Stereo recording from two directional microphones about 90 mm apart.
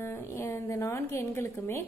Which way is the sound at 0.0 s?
30° left (ahead or behind).